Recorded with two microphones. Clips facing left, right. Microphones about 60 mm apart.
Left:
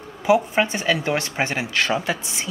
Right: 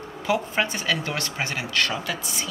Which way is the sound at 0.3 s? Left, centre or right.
Left.